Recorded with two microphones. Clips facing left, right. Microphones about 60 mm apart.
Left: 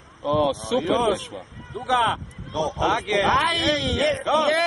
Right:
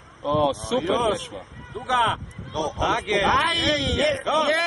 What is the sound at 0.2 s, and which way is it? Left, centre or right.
Speech, centre.